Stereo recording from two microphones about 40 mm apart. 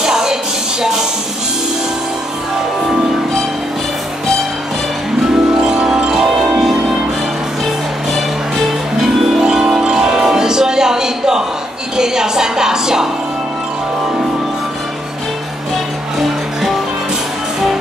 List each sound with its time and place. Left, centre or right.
0.0 s music: centre
5.3 s music: centre
9.4 s music: centre
16.2 s music: centre